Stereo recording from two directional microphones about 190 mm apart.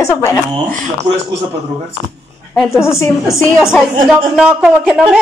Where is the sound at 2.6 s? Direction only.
15° left (ahead or behind).